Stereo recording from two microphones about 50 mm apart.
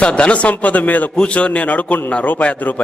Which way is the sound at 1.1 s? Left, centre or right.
Left.